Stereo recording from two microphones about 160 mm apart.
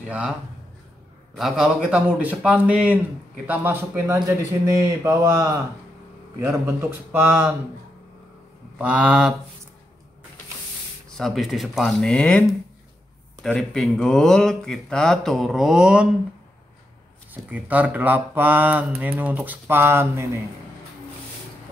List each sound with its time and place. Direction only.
1.3 s speech: 5° right (ahead or behind)
4.7 s a sound: 20° right (ahead or behind)
6.4 s speech: 10° right (ahead or behind)
8.7 s speech: 10° right (ahead or behind)
11.1 s speech: centre (ahead or behind)
17.3 s speech: 10° right (ahead or behind)